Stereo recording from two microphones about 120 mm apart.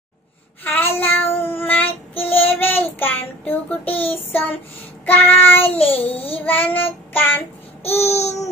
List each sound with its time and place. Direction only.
0.7 s child singing: 15° left (ahead or behind)
7.9 s babbling: 20° left (ahead or behind)